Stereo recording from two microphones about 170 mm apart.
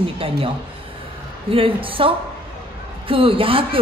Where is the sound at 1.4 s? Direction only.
30° right (ahead or behind).